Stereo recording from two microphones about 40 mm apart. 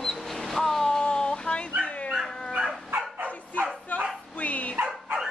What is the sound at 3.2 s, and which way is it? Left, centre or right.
Bow-wow, right.